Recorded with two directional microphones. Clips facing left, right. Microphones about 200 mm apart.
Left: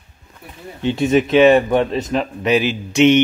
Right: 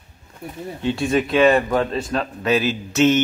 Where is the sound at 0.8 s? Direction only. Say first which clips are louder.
Left 4 dB; 20° left (ahead or behind).